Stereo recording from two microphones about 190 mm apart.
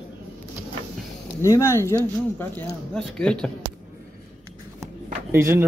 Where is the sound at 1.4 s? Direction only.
15° left (ahead or behind).